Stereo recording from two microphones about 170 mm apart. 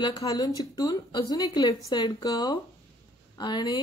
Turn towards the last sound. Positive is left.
turn(degrees=25)  # may be behind; listen again after turning